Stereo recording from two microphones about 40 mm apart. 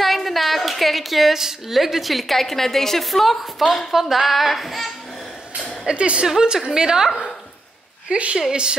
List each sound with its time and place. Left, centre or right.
0.0 s a woman's voice: centre
5.9 s a woman's voice: right
6.4 s a woman's voice: centre
8.1 s speech: right
8.4 s a woman's voice: centre